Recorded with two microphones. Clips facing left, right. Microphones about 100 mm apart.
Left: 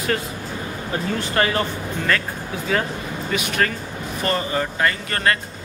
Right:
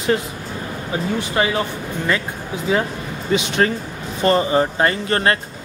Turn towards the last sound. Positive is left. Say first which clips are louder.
# right 3 dB
turn(degrees=-30)  # may be behind; listen again after turning